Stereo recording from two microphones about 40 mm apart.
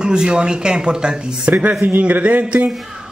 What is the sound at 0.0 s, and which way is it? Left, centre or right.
Speech, right.